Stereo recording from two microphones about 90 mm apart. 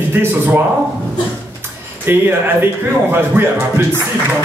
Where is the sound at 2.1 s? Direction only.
25° right (ahead or behind).